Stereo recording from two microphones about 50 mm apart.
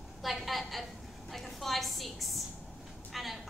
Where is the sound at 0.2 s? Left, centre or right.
Centre.